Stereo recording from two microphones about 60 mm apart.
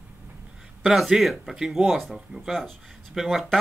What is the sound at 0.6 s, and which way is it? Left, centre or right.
A man's voice, centre.